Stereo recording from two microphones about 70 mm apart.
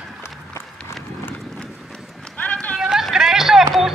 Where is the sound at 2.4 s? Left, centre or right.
Left.